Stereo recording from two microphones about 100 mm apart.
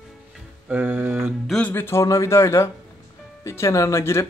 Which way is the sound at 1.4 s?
5° left (ahead or behind).